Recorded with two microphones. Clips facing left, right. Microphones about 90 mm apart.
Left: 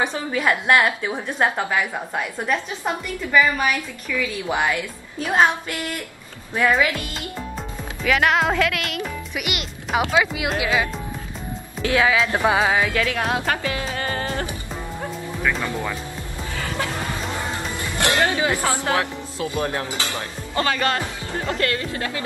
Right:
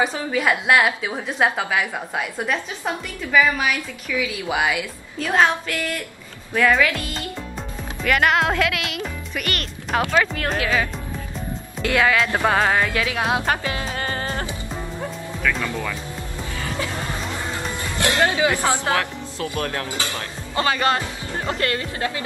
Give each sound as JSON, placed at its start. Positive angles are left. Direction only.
{"t": 0.0, "sound": "a woman's voice", "side_deg": -5}
{"t": 5.2, "sound": "female singing", "side_deg": 10}
{"t": 7.2, "sound": "speech", "side_deg": 0}
{"t": 10.2, "sound": "female singing", "side_deg": 10}
{"t": 11.8, "sound": "a woman's voice", "side_deg": 5}
{"t": 13.0, "sound": "a woman's voice", "side_deg": -10}
{"t": 13.5, "sound": "music", "side_deg": -30}
{"t": 15.6, "sound": "speech", "side_deg": 25}
{"t": 16.4, "sound": "music", "side_deg": 60}
{"t": 18.1, "sound": "music", "side_deg": -20}
{"t": 18.6, "sound": "speech", "side_deg": -25}
{"t": 18.9, "sound": "speech", "side_deg": 20}
{"t": 20.7, "sound": "speech", "side_deg": -30}